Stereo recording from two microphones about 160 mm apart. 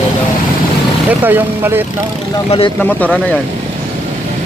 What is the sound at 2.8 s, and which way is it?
Speech, 10° left (ahead or behind).